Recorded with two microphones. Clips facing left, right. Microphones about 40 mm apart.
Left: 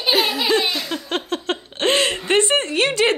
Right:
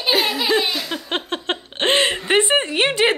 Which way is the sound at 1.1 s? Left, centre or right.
Right.